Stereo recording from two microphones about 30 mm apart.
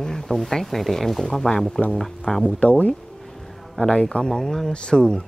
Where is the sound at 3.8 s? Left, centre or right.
Left.